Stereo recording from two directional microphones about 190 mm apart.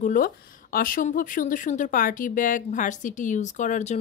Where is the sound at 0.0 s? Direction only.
45° left (ahead or behind).